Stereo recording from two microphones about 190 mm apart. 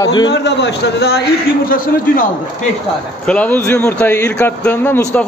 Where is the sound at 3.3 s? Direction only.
5° left (ahead or behind).